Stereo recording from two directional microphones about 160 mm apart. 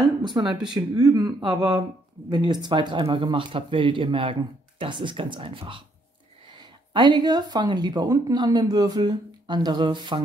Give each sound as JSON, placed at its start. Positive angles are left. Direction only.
{"t": 0.2, "sound": "a woman's voice", "side_deg": -30}
{"t": 6.9, "sound": "a woman's voice", "side_deg": -25}